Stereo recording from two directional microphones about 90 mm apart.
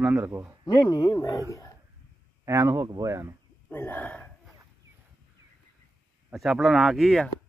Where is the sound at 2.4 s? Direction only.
35° right (ahead or behind).